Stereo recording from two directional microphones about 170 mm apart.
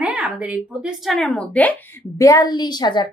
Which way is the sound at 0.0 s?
10° right (ahead or behind).